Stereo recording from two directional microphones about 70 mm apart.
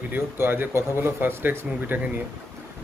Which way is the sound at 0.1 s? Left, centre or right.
Right.